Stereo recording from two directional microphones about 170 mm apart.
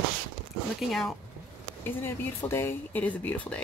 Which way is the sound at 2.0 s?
15° left (ahead or behind).